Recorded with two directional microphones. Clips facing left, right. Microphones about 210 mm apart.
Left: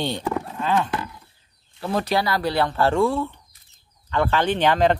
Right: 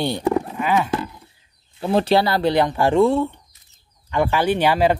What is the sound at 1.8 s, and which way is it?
Speech, 25° right (ahead or behind).